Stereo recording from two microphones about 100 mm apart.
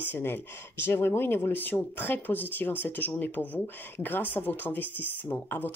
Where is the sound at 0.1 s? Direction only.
20° left (ahead or behind).